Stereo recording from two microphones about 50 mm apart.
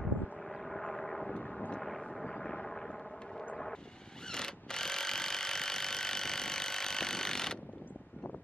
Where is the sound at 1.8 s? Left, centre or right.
Centre.